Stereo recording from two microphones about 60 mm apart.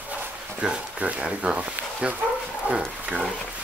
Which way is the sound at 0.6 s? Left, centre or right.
Centre.